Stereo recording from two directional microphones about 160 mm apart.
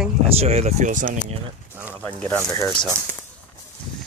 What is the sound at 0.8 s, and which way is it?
Speech, 55° right (ahead or behind).